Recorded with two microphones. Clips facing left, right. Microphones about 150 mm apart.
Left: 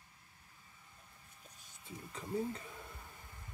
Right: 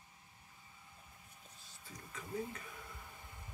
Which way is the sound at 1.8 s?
30° left (ahead or behind).